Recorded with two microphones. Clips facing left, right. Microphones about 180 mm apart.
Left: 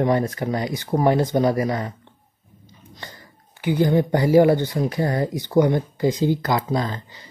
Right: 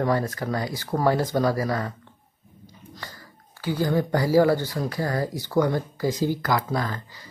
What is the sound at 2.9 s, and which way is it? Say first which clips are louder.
Speech: left 2 dB; 20° left (ahead or behind).